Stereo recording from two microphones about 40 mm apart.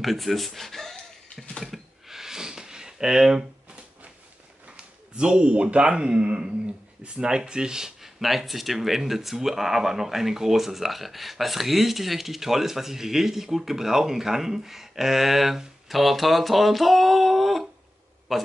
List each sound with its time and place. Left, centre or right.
0.0 s speech: centre
1.6 s a sound: centre
4.6 s speech: right
8.2 s a man's voice: centre